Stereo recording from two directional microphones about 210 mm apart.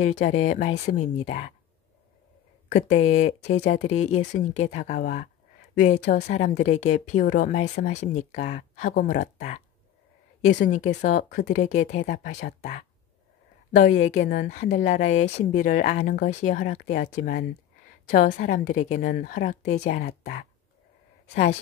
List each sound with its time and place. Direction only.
0.0 s a woman's voice: 35° left (ahead or behind)
3.1 s a woman's voice: 35° left (ahead or behind)